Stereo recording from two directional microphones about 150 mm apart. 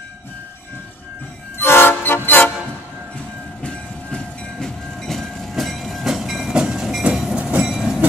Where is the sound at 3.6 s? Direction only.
5° left (ahead or behind).